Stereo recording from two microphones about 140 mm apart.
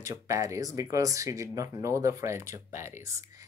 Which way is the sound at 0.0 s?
20° right (ahead or behind).